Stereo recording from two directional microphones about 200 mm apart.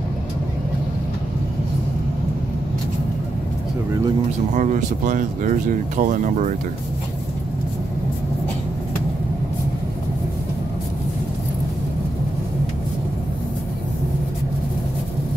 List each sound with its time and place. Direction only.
4.6 s speech: 40° right (ahead or behind)